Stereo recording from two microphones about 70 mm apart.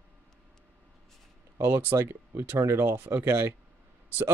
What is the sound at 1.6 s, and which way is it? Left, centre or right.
Speech, right.